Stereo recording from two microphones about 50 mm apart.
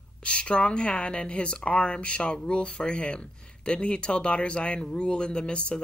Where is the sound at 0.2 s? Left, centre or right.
Left.